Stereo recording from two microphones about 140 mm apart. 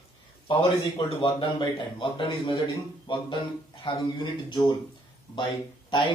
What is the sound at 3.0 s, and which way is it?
Speech, 35° left (ahead or behind).